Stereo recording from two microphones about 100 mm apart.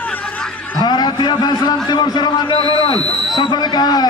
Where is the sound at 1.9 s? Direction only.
45° left (ahead or behind).